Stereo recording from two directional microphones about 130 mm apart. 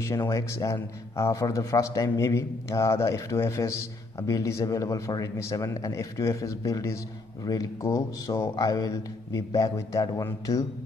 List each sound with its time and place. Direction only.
0.0 s a man's voice: 25° left (ahead or behind)